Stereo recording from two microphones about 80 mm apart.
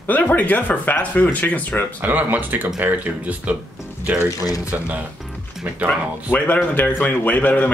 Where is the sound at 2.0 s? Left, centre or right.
Right.